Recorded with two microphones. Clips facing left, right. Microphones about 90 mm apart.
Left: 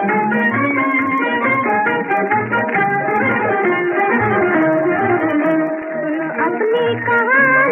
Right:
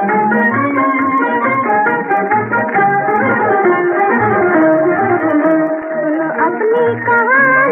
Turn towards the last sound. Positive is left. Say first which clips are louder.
# right 3 dB
turn(degrees=0)  # may be behind; listen again after turning